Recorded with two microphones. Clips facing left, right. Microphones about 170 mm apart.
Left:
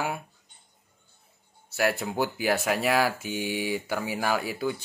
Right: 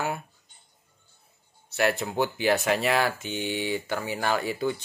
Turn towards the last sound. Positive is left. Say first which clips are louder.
# right 1 dB
turn(degrees=5)  # may be behind; listen again after turning